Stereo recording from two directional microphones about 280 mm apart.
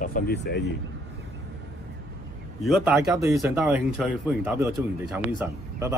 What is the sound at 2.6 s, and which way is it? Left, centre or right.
Speech, centre.